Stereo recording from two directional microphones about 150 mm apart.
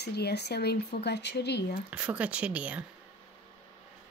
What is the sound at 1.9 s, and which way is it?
Speech, 10° right (ahead or behind).